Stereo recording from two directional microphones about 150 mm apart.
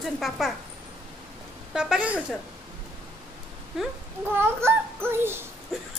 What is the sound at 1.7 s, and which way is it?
Speech, 5° right (ahead or behind).